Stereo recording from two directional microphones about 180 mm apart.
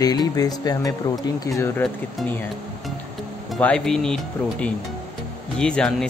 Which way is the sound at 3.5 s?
5° left (ahead or behind).